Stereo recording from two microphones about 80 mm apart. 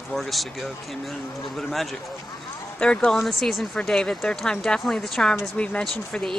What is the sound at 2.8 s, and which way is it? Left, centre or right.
Speech, centre.